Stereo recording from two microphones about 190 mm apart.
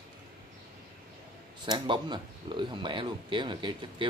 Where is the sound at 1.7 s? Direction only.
25° right (ahead or behind).